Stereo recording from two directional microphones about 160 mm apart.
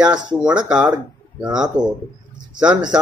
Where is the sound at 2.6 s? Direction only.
25° right (ahead or behind).